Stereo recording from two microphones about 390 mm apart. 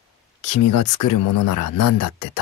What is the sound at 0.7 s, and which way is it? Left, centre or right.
Speech, left.